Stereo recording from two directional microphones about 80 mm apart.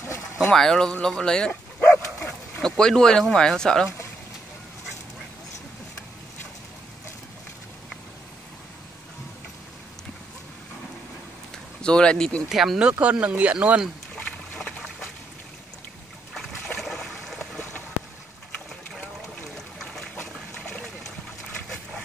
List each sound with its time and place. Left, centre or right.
0.4 s speech: centre
2.6 s speech: centre
11.8 s speech: centre
12.4 s speech: centre
13.0 s speech: centre
16.3 s a sound: centre
19.5 s a sound: centre
20.6 s trickle: centre